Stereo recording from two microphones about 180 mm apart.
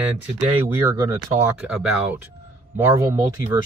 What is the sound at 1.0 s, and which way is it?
Speech, 15° right (ahead or behind).